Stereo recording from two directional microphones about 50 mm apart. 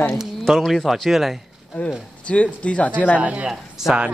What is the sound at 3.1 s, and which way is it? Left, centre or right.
Speech, right.